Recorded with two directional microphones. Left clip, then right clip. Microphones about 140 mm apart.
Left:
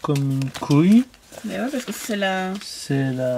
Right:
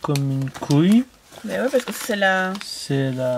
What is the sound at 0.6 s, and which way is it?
Speech, 5° right (ahead or behind).